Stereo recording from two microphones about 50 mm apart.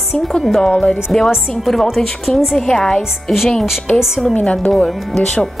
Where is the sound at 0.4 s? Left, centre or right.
Centre.